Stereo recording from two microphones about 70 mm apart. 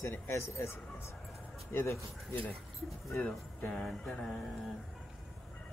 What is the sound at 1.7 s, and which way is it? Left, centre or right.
Speech, left.